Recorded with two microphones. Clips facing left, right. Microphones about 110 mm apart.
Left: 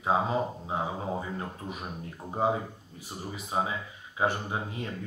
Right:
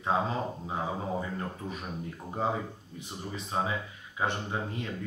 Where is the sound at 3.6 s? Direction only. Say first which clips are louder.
Even; 20° left (ahead or behind).